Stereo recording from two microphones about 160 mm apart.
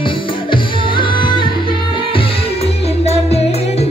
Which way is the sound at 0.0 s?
30° left (ahead or behind).